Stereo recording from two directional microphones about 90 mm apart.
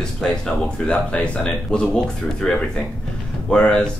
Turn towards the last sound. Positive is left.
turn(degrees=10)  # may be behind; listen again after turning